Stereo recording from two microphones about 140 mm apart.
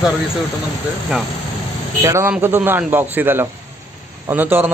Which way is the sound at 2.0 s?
20° right (ahead or behind).